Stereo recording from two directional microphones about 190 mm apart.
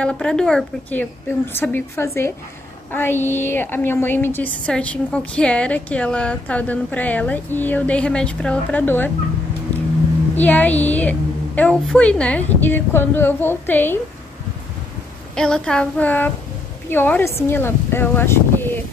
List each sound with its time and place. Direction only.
0.0 s a woman's voice: 5° left (ahead or behind)
10.3 s a woman's voice: 10° left (ahead or behind)
15.3 s a woman's voice: 5° left (ahead or behind)